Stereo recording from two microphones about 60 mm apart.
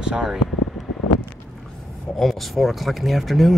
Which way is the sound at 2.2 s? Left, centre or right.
Centre.